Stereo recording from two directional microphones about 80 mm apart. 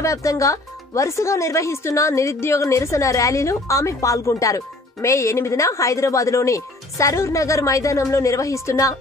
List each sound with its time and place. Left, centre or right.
0.0 s speech: left